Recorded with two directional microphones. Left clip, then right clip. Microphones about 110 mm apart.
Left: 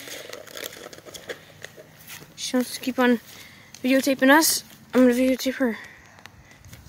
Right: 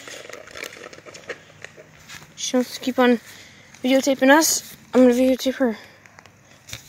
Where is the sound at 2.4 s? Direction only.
20° right (ahead or behind).